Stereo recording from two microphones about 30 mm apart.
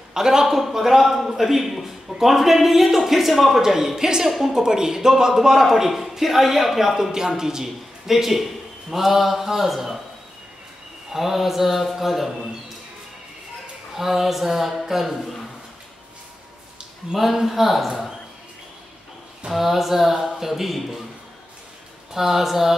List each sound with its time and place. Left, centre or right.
0.1 s a man's voice: centre
0.7 s a man's voice: centre
3.6 s a man's voice: centre
4.3 s a man's voice: centre
4.6 s a man's voice: centre
7.1 s a man's voice: centre
11.1 s a man's voice: centre
13.9 s a man's voice: centre
17.1 s speech: centre
19.5 s a man's voice: centre
22.1 s a man's voice: centre